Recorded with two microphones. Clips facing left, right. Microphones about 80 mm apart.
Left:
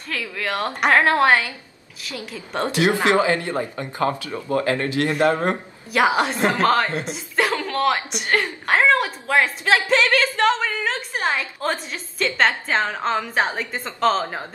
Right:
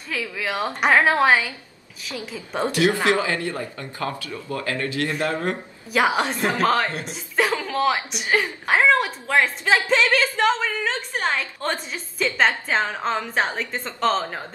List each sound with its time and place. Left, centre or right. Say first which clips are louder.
0.1 s a woman's voice: left 1 dB; centre
2.7 s speech: left 2 dB; left
4.3 s speech: left 7 dB; left
4.6 s speech: left 4 dB; left
5.0 s a man's voice: left 7 dB; left
5.9 s a woman's voice: left 2 dB; centre